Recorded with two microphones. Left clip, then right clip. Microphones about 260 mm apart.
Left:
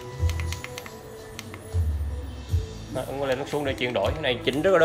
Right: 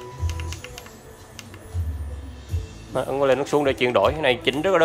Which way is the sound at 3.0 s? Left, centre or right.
Centre.